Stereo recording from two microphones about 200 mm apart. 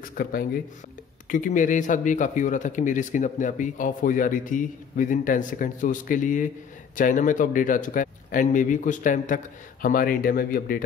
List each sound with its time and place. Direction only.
0.0 s speech: 45° left (ahead or behind)